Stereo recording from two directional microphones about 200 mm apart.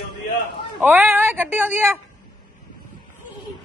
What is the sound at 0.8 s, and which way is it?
Speech, 10° right (ahead or behind).